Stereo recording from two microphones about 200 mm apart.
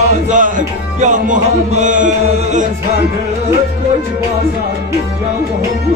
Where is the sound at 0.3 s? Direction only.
40° right (ahead or behind).